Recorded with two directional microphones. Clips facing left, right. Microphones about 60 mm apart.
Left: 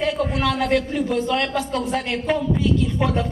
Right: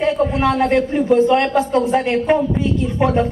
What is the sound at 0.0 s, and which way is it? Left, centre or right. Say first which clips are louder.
A man's voice: right 5 dB; right.